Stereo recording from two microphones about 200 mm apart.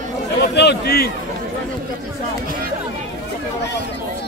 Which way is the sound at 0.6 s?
55° left (ahead or behind).